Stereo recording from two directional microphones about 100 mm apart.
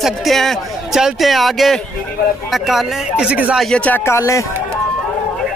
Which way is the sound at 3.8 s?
15° left (ahead or behind).